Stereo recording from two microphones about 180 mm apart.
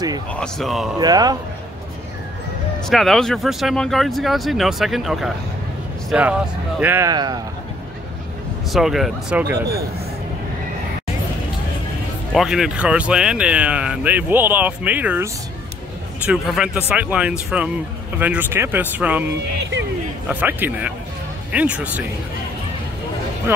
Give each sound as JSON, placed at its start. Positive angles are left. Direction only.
{"t": 0.3, "sound": "speech", "side_deg": 5}
{"t": 0.9, "sound": "speech", "side_deg": -20}
{"t": 2.9, "sound": "speech", "side_deg": 0}
{"t": 8.7, "sound": "speech", "side_deg": 0}
{"t": 12.4, "sound": "speech", "side_deg": 0}
{"t": 16.3, "sound": "speech", "side_deg": -5}
{"t": 20.2, "sound": "speech", "side_deg": -10}